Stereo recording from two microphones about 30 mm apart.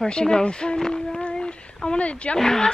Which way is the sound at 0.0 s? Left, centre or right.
Left.